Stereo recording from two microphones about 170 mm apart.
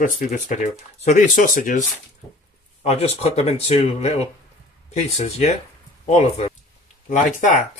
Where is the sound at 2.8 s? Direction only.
40° left (ahead or behind).